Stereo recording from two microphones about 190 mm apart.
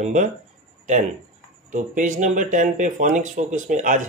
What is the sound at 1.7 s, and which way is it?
Speech, 40° right (ahead or behind).